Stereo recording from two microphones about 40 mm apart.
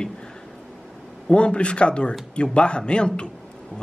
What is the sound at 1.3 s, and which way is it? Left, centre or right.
Speech, left.